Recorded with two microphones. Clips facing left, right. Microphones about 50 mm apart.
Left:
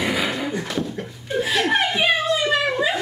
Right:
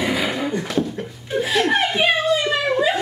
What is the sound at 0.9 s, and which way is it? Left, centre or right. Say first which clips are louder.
Chuckle: right 1 dB; centre.